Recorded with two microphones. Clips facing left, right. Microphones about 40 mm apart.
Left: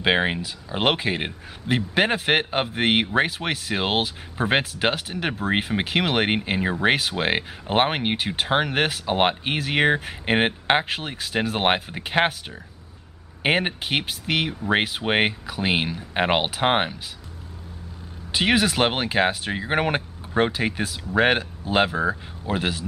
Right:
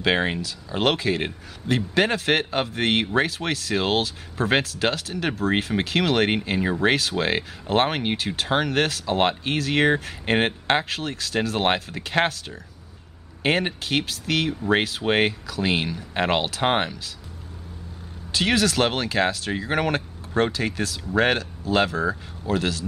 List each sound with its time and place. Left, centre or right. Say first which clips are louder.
0.0 s speech: left 1 dB; centre
18.3 s speech: left 1 dB; centre